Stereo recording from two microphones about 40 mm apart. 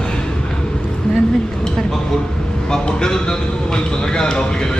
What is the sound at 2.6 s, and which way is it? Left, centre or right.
A man's voice, centre.